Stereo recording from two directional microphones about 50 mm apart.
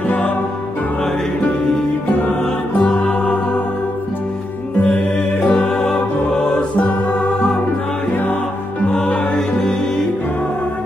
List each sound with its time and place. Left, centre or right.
2.2 s music: left
4.8 s music: left
8.9 s music: left